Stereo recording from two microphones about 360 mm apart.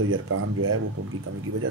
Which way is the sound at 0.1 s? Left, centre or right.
Right.